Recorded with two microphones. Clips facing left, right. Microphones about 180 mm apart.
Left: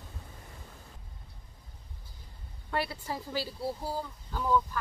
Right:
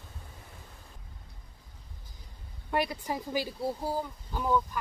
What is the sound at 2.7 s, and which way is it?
A woman's voice, 15° right (ahead or behind).